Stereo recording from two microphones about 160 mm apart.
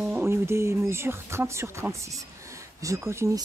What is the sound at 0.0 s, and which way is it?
Speech, 15° right (ahead or behind).